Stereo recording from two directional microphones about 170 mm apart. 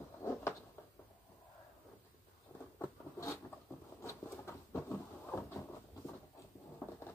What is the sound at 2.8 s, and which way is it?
Zipper, 15° left (ahead or behind).